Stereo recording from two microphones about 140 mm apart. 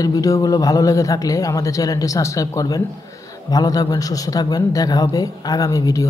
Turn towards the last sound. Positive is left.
turn(degrees=25)  # may be behind; listen again after turning